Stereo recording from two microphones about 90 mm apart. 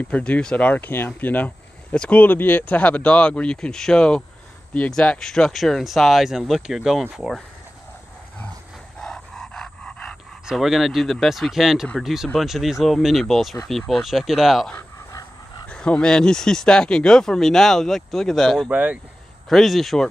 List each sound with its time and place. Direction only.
0.0 s speech: 15° left (ahead or behind); by 7.4 s centre (ahead or behind)
9.0 s dog: 5° left (ahead or behind)
10.4 s speech: 5° right (ahead or behind)
15.7 s speech: 10° left (ahead or behind)
18.7 s speech: 15° right (ahead or behind)
19.5 s speech: centre (ahead or behind)